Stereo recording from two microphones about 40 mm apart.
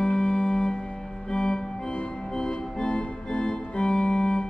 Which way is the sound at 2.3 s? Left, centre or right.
Centre.